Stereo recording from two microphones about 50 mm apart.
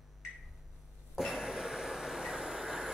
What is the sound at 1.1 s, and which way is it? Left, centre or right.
Train, centre.